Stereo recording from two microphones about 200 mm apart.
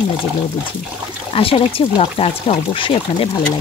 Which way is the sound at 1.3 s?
30° left (ahead or behind).